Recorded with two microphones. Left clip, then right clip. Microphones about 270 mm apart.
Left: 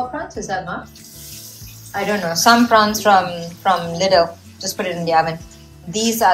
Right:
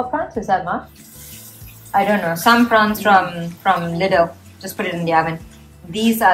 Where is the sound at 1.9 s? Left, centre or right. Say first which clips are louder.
Right 4 dB; centre.